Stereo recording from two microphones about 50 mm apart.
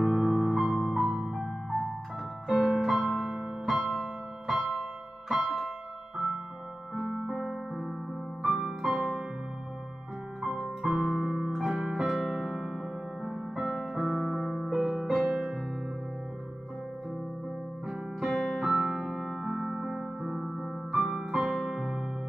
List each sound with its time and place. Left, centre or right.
0.0 s music: centre
2.4 s piano: centre
2.9 s music: centre
6.1 s music: centre
10.4 s music: centre
17.8 s music: centre